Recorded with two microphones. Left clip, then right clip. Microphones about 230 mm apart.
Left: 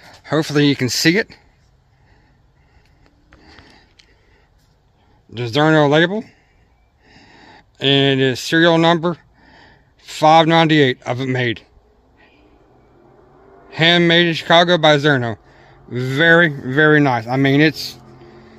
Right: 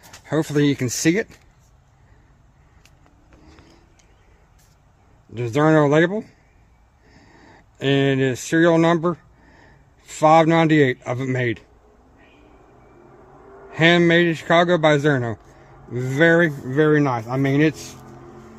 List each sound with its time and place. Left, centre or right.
0.0 s speech: left
3.3 s a sound: left
5.3 s a man's voice: left
13.7 s a man's voice: left